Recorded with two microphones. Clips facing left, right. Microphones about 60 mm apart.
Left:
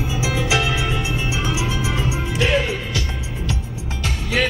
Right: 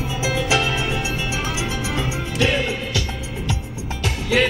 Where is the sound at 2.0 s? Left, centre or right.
Left.